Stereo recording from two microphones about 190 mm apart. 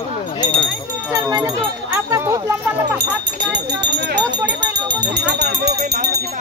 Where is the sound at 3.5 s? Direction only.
65° right (ahead or behind).